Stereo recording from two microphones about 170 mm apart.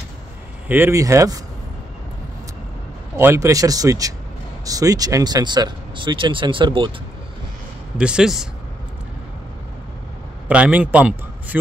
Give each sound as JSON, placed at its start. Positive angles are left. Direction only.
{"t": 0.7, "sound": "speech", "side_deg": -15}
{"t": 3.2, "sound": "speech", "side_deg": -15}
{"t": 8.0, "sound": "speech", "side_deg": -5}
{"t": 10.5, "sound": "a man's voice", "side_deg": -5}